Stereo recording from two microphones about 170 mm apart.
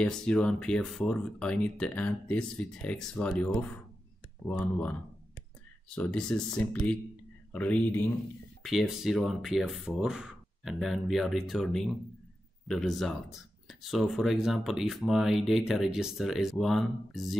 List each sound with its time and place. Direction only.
0.0 s speech: 5° left (ahead or behind)
5.9 s speech: 5° left (ahead or behind)